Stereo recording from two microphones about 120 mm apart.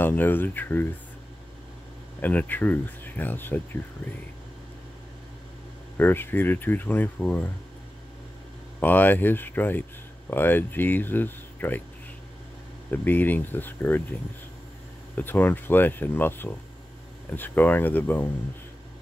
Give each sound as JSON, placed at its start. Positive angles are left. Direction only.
{"t": 0.0, "sound": "speech", "side_deg": 15}
{"t": 2.2, "sound": "speech", "side_deg": 15}
{"t": 5.9, "sound": "speech", "side_deg": 15}
{"t": 8.7, "sound": "speech", "side_deg": 15}
{"t": 12.9, "sound": "speech", "side_deg": 15}
{"t": 15.1, "sound": "speech", "side_deg": 15}